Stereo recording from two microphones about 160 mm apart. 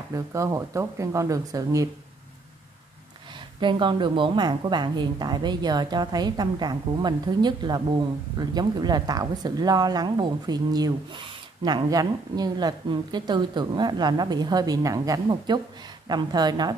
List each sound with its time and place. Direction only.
0.1 s a woman's voice: 20° right (ahead or behind)
3.6 s a woman's voice: 30° right (ahead or behind)